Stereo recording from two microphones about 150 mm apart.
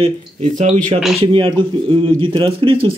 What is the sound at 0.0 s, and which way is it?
Speech, 50° right (ahead or behind).